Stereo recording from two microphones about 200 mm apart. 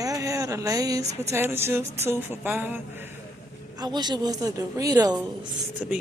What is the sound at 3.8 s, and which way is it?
Speech, 20° right (ahead or behind).